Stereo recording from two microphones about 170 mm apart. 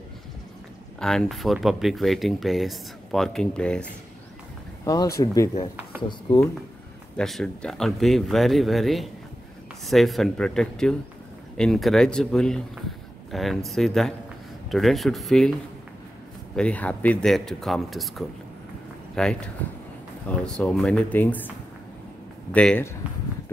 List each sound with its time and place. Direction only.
0.9 s speech: centre (ahead or behind)
4.8 s speech: 20° left (ahead or behind)
7.2 s speech: 5° left (ahead or behind)
16.5 s speech: 5° left (ahead or behind)
22.5 s speech: 10° left (ahead or behind)